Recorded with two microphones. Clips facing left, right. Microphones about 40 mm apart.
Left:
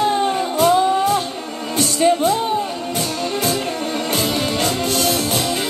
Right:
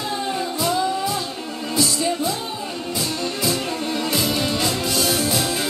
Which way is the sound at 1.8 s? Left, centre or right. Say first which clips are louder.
Left 6 dB; left.